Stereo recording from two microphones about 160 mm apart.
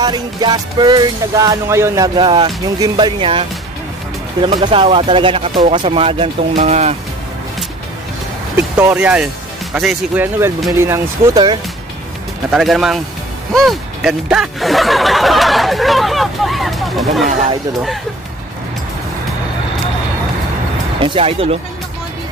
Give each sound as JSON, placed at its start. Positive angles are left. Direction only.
{"t": 0.0, "sound": "music", "side_deg": -25}
{"t": 4.4, "sound": "speech", "side_deg": -30}
{"t": 8.5, "sound": "speech", "side_deg": -10}
{"t": 12.4, "sound": "speech", "side_deg": 0}
{"t": 21.0, "sound": "speech", "side_deg": -35}